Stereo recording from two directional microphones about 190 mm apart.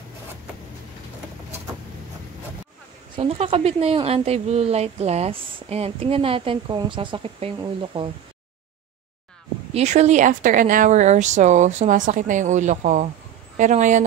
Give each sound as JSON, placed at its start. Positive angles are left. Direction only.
{"t": 3.2, "sound": "speech", "side_deg": -30}
{"t": 9.8, "sound": "speech", "side_deg": -35}